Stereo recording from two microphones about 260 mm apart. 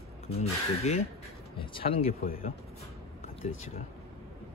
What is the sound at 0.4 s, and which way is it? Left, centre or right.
Speech, left.